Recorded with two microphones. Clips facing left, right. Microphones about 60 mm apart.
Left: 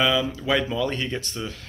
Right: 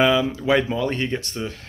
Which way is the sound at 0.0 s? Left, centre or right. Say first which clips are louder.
Right 4 dB; right.